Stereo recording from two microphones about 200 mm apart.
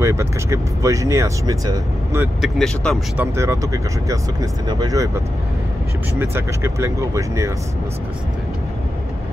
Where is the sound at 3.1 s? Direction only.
15° right (ahead or behind).